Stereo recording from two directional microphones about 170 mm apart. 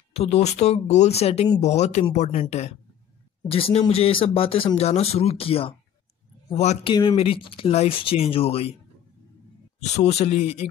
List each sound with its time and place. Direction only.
0.1 s speech: 40° left (ahead or behind)
6.9 s speech: 25° left (ahead or behind)
9.8 s speech: 40° left (ahead or behind)